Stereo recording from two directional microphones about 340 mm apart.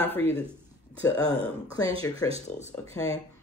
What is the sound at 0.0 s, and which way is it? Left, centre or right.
Speech, centre.